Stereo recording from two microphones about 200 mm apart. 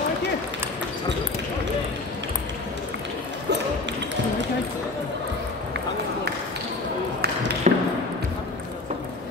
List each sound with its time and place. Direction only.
7.7 s basketball bounce: 35° right (ahead or behind)